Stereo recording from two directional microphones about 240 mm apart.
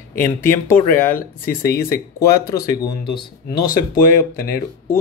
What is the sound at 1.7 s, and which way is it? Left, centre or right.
Speech, left.